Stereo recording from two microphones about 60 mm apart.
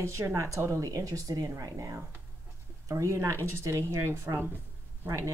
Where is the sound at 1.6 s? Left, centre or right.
Right.